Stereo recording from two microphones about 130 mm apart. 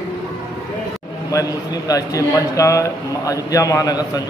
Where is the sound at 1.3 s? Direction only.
25° left (ahead or behind).